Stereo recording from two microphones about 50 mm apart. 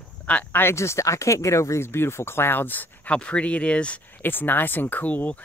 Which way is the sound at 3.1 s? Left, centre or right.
Left.